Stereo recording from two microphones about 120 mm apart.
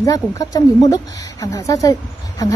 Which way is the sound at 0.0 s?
30° left (ahead or behind).